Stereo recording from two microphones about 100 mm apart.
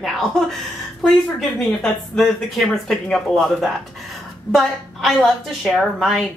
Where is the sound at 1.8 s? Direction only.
5° left (ahead or behind).